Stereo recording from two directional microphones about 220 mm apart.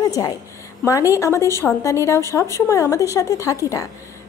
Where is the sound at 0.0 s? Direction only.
15° left (ahead or behind).